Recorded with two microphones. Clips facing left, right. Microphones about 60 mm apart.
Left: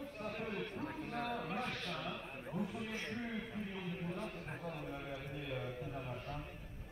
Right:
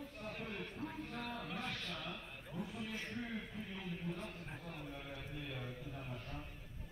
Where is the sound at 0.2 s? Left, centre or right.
Left.